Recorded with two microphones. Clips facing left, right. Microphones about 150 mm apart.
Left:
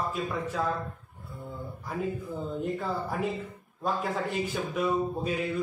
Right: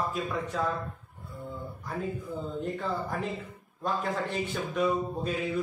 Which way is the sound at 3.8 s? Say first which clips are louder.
Left 1 dB; 5° left (ahead or behind).